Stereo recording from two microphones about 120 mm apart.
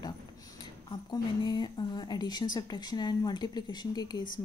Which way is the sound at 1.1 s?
35° left (ahead or behind).